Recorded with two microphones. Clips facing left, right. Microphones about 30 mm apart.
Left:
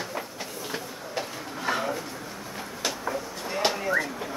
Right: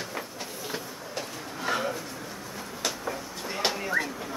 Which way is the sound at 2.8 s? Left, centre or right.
Centre.